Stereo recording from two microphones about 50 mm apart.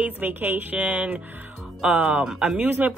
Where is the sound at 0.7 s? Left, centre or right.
Right.